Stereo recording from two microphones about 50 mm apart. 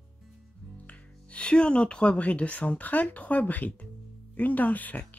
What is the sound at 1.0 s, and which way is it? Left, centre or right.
Speech, left.